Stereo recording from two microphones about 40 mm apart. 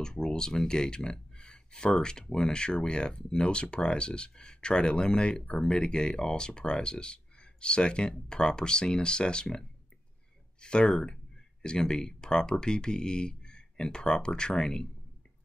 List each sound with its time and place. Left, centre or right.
0.0 s speech: centre